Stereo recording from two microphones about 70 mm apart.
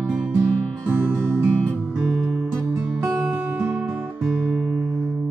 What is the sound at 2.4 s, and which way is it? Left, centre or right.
Music, centre.